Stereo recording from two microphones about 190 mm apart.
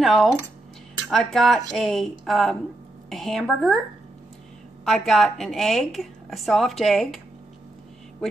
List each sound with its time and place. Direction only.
0.0 s a woman's voice: centre (ahead or behind)
4.8 s a woman's voice: centre (ahead or behind)